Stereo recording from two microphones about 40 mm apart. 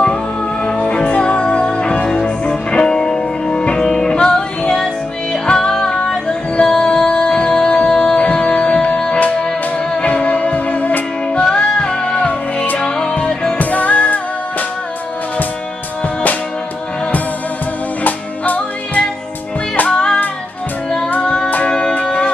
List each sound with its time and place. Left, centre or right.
0.7 s music: left
10.0 s music: left
11.5 s music: left
13.6 s music: left
18.0 s music: left
19.9 s music: left
21.2 s music: left